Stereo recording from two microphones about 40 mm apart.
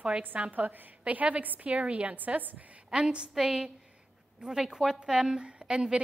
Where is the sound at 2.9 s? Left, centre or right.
Right.